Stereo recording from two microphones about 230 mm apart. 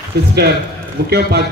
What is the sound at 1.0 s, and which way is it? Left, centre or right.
Speech, right.